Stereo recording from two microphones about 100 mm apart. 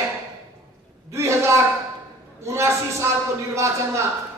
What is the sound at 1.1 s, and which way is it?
A man's voice, 30° right (ahead or behind).